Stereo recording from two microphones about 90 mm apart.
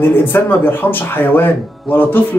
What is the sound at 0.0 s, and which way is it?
Speech, 25° left (ahead or behind).